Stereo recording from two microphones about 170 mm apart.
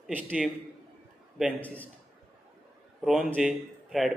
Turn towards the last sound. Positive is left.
turn(degrees=0)  # may be behind; listen again after turning